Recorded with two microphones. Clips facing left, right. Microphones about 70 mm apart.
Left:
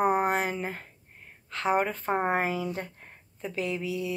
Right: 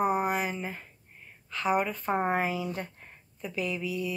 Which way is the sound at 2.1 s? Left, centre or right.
Left.